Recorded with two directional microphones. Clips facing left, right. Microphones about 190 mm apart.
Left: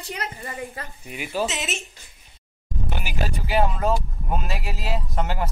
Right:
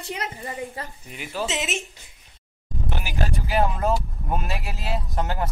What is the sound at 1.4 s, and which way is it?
Speech, 20° right (ahead or behind).